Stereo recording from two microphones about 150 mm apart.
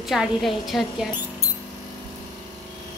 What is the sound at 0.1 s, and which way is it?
Speech, centre (ahead or behind).